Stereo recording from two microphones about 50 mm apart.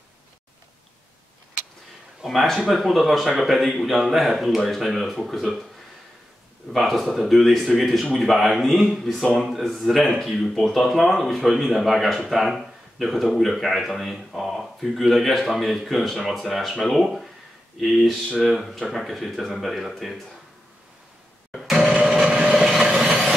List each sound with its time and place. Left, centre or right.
2.2 s a man's voice: centre
6.7 s a man's voice: centre
21.6 s a sound: centre
21.9 s vehicle: centre
22.6 s vehicle: centre